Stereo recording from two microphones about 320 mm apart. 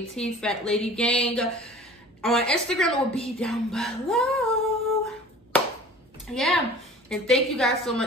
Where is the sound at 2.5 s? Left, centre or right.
Centre.